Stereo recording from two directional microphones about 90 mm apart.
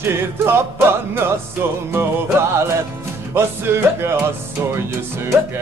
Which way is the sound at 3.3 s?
25° right (ahead or behind).